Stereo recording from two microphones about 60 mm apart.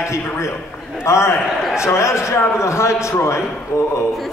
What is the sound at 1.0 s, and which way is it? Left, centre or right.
A man's voice, left.